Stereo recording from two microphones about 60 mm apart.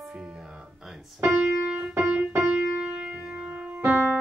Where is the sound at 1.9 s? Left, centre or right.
Right.